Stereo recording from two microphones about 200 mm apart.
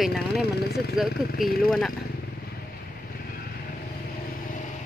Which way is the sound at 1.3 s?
50° left (ahead or behind).